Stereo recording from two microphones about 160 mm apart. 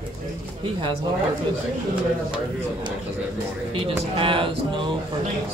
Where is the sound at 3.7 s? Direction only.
35° right (ahead or behind).